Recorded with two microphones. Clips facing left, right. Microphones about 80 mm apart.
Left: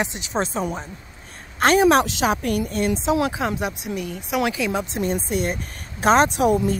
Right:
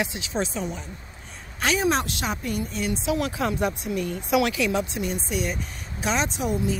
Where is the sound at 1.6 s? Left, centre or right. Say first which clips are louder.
Left 8 dB; left.